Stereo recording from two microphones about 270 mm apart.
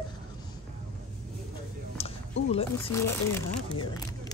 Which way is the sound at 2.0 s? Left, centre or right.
Left.